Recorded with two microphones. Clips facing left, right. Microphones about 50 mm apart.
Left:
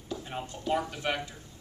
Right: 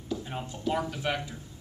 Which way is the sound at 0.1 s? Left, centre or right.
Centre.